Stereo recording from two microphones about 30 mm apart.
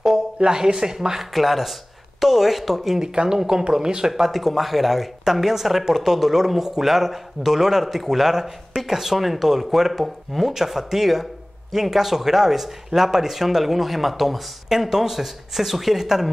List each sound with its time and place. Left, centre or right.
0.4 s speech: right
1.3 s speech: centre
3.2 s speech: right
4.2 s speech: centre